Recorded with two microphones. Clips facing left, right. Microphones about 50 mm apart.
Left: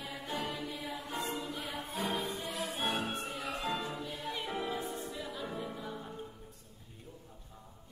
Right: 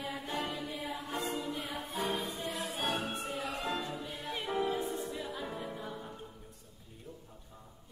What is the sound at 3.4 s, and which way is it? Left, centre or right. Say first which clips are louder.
Music: left 2 dB; centre.